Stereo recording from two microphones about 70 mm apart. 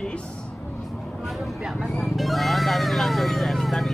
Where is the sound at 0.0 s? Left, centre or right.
Centre.